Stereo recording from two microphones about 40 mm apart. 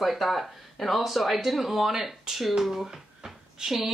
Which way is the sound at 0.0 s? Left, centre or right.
Centre.